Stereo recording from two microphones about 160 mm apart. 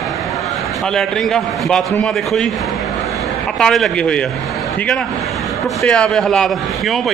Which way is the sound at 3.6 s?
5° left (ahead or behind).